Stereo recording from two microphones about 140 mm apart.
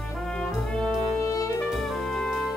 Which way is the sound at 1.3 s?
25° left (ahead or behind).